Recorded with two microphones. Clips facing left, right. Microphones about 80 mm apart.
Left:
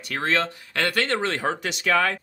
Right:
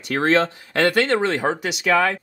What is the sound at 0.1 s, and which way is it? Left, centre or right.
Speech, right.